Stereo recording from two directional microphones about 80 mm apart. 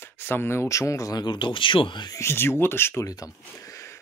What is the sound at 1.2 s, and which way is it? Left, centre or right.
Speech, left.